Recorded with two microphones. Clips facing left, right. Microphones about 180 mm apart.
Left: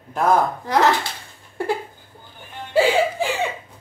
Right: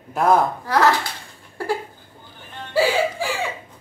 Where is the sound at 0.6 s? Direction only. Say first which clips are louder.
Even; 20° left (ahead or behind).